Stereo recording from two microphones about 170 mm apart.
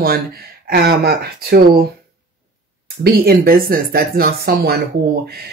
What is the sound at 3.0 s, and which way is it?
Speech, 60° right (ahead or behind).